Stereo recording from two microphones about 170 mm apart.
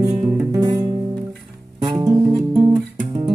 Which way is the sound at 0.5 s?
20° right (ahead or behind).